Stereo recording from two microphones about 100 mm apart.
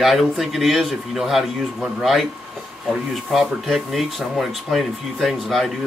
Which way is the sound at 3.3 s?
Centre (ahead or behind).